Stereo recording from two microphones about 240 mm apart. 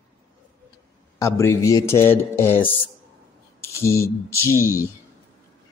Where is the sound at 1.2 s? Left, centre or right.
Centre.